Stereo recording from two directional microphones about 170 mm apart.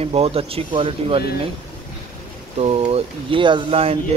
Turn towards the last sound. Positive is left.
turn(degrees=-35)  # may be behind; listen again after turning